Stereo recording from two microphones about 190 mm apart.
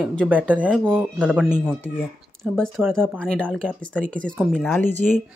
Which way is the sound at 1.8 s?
5° left (ahead or behind).